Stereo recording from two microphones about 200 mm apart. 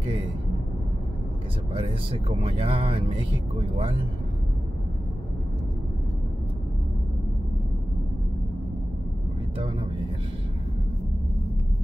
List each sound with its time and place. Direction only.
1.7 s speech: 30° right (ahead or behind)